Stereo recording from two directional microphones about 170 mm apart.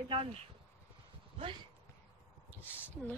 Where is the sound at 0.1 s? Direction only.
35° right (ahead or behind).